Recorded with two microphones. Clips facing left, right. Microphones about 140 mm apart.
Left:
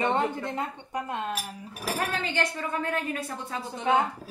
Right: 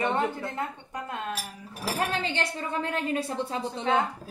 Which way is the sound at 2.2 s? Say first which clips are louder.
Left 1 dB; 30° right (ahead or behind).